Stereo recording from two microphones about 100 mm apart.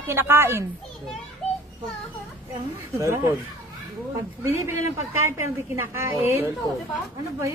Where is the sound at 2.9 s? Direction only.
30° right (ahead or behind).